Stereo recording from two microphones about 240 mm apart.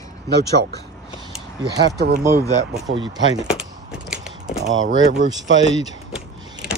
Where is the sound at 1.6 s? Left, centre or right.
Centre.